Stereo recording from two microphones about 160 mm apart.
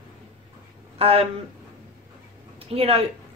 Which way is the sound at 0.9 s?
35° right (ahead or behind).